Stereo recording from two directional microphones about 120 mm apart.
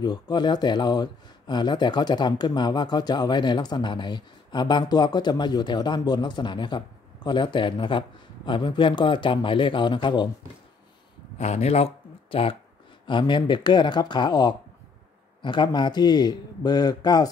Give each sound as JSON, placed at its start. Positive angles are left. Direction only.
{"t": 0.0, "sound": "speech", "side_deg": 35}
{"t": 11.3, "sound": "speech", "side_deg": 65}